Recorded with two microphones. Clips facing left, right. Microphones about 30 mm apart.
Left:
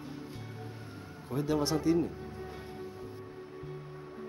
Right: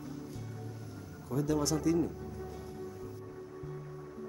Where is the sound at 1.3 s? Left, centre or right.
Left.